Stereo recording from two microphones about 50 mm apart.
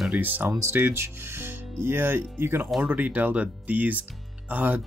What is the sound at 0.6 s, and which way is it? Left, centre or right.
Speech, right.